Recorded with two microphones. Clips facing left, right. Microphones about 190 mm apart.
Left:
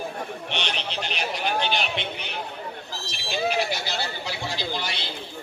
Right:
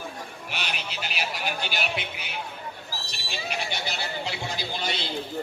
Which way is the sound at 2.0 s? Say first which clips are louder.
Left 3 dB; 5° right (ahead or behind).